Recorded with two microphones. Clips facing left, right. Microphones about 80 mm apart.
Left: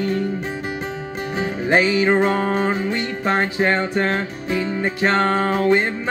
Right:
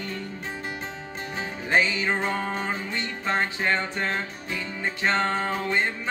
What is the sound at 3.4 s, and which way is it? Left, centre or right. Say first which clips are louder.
Music: left 6 dB; left.